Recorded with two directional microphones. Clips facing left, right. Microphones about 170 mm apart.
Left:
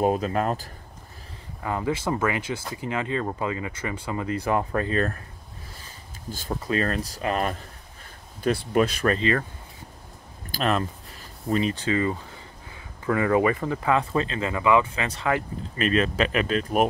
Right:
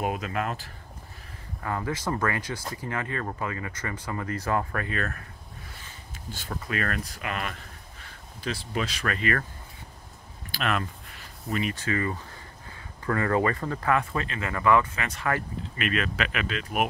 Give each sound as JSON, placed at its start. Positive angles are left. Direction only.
{"t": 0.0, "sound": "speech", "side_deg": 35}
{"t": 1.6, "sound": "speech", "side_deg": 15}
{"t": 2.3, "sound": "speech", "side_deg": 20}
{"t": 4.8, "sound": "speech", "side_deg": 30}
{"t": 6.5, "sound": "speech", "side_deg": 30}
{"t": 8.5, "sound": "speech", "side_deg": 55}
{"t": 9.0, "sound": "speech", "side_deg": 30}
{"t": 10.5, "sound": "speech", "side_deg": 30}
{"t": 14.5, "sound": "speech", "side_deg": 15}
{"t": 15.8, "sound": "speech", "side_deg": 35}